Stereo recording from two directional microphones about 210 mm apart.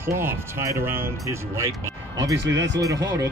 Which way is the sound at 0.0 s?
10° right (ahead or behind).